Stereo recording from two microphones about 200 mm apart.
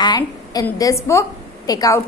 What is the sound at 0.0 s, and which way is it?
A woman's voice, 20° left (ahead or behind).